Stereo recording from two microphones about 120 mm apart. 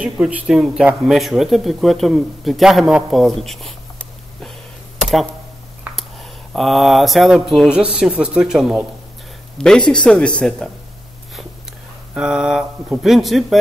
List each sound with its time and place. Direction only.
0.0 s speech: 10° right (ahead or behind)
5.9 s a sound: 10° right (ahead or behind)
6.5 s speech: centre (ahead or behind)
12.1 s speech: 5° right (ahead or behind)